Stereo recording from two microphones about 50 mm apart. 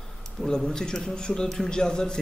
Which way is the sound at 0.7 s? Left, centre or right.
Centre.